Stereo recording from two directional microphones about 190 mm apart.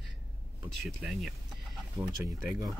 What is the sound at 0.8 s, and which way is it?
Speech, centre (ahead or behind).